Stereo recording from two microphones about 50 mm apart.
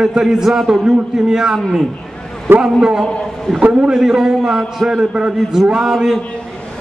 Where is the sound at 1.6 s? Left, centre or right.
Centre.